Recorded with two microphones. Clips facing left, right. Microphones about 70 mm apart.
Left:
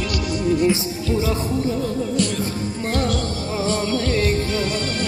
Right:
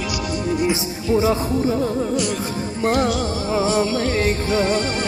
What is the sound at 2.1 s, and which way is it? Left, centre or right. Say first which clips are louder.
Music: even; centre.